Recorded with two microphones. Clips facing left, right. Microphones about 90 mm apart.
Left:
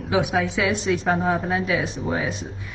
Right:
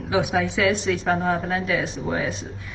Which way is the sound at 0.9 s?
5° left (ahead or behind).